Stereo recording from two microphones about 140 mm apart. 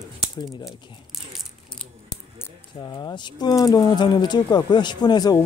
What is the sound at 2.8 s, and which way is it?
Speech, 30° left (ahead or behind).